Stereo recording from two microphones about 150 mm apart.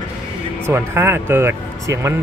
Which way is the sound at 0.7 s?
15° right (ahead or behind).